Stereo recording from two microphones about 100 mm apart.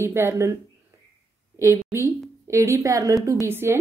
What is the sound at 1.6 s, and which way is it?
A woman's voice, 30° right (ahead or behind).